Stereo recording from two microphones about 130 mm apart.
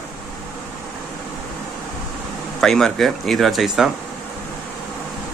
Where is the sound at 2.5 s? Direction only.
Centre (ahead or behind).